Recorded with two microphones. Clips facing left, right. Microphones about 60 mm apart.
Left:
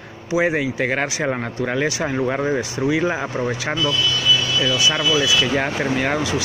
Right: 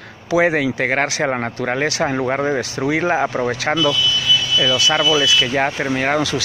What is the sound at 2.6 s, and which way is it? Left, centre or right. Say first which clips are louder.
Speech: right 1 dB; right.